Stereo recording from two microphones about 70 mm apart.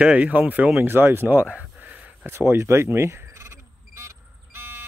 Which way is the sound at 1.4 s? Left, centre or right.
Centre.